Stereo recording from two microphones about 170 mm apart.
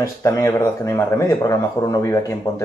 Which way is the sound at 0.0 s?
20° left (ahead or behind).